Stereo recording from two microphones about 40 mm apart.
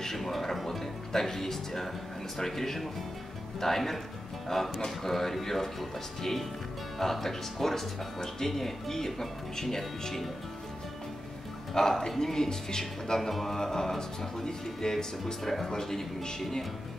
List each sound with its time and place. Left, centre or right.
0.0 s speech: centre
11.7 s speech: centre